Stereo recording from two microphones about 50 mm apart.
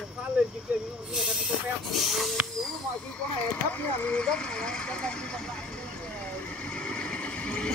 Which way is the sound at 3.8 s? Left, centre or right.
Left.